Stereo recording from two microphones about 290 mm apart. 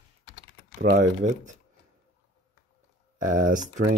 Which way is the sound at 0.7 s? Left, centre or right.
Right.